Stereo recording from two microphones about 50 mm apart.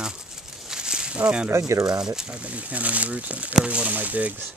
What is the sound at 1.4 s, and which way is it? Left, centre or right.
Speech, right.